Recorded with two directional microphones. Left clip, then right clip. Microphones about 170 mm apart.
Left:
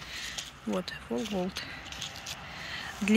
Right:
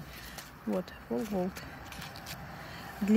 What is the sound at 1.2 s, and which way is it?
Speech, 5° right (ahead or behind).